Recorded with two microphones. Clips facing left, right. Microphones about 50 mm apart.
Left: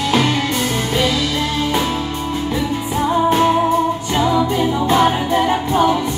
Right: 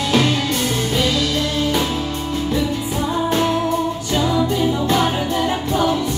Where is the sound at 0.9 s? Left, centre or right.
Centre.